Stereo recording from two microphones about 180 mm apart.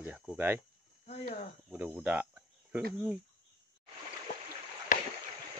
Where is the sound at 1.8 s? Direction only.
10° right (ahead or behind).